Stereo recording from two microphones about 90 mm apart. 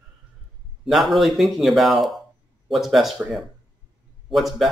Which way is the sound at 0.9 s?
Centre (ahead or behind).